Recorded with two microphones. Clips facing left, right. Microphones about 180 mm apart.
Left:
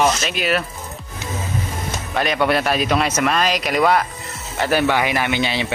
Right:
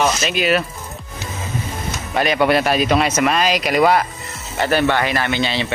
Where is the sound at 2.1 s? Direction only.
5° right (ahead or behind).